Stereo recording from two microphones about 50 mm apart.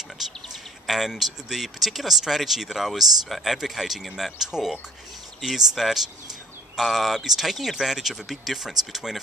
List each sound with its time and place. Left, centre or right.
0.2 s speech: centre